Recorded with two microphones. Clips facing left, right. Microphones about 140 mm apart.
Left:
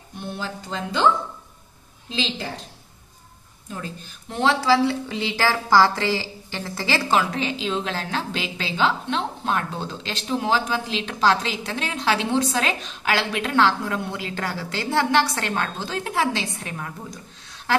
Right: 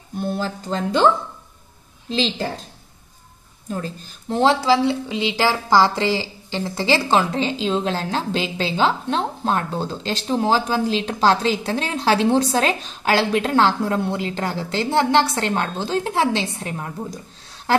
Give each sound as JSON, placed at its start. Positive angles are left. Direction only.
{"t": 0.2, "sound": "a woman's voice", "side_deg": -40}
{"t": 3.7, "sound": "a woman's voice", "side_deg": -35}
{"t": 4.6, "sound": "a woman's voice", "side_deg": -20}